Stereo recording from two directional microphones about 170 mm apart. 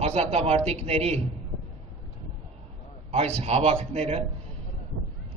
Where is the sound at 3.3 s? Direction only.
40° right (ahead or behind).